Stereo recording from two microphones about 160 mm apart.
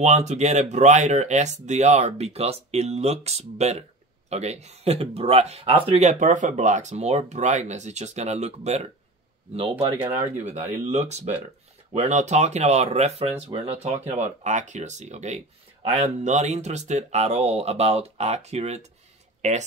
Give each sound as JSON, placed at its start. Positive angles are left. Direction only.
{"t": 0.0, "sound": "speech", "side_deg": -45}
{"t": 10.3, "sound": "speech", "side_deg": -45}